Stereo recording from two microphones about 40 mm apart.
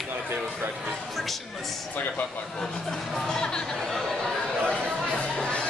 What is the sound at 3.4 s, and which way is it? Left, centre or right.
Chatter, centre.